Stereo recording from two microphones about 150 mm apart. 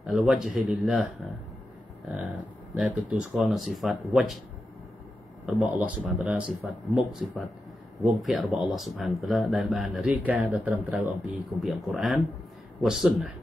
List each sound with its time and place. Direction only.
0.0 s speech: centre (ahead or behind)
2.8 s speech: 5° right (ahead or behind)
5.5 s speech: 10° right (ahead or behind)